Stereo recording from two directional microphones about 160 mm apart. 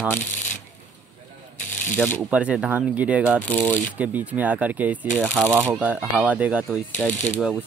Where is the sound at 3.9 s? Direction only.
10° right (ahead or behind).